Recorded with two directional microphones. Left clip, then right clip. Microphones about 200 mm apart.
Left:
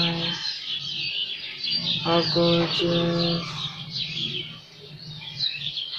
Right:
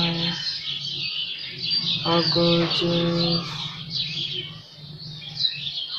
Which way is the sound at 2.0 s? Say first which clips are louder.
Even; centre (ahead or behind).